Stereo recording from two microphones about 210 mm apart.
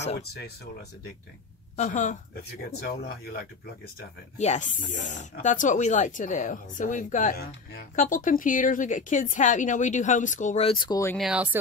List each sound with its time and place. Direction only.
0.2 s speech: 50° left (ahead or behind)
1.8 s speech: 35° left (ahead or behind)
2.9 s speech: 45° left (ahead or behind)
4.4 s speech: 35° left (ahead or behind); by 11.1 s 15° left (ahead or behind)
11.1 s speech: 5° right (ahead or behind)